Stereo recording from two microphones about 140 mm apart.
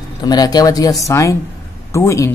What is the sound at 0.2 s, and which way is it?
Speech, 30° left (ahead or behind).